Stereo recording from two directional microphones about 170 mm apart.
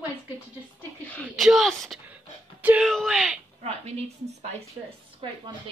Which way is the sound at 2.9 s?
Centre (ahead or behind).